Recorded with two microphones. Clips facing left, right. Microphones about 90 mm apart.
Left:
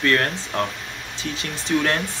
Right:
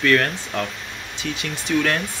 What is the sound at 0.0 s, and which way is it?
Speech, 30° left (ahead or behind).